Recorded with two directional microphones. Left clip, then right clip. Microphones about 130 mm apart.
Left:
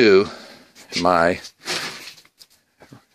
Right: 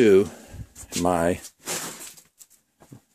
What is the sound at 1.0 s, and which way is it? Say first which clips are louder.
Speech: left 6 dB; 30° right (ahead or behind).